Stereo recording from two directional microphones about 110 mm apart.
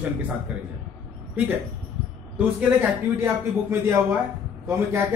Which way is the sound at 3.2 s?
25° right (ahead or behind).